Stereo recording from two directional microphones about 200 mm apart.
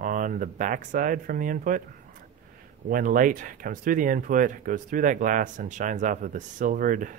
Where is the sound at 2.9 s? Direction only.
45° right (ahead or behind).